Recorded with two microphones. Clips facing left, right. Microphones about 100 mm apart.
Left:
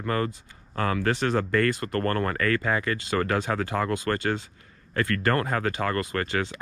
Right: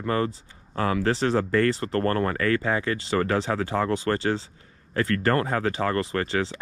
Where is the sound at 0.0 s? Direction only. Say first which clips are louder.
Right 2 dB; 30° right (ahead or behind).